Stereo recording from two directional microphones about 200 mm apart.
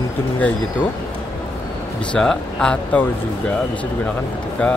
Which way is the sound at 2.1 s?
5° left (ahead or behind).